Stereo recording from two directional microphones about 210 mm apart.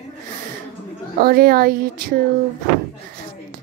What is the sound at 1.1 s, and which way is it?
A woman's voice, 45° right (ahead or behind).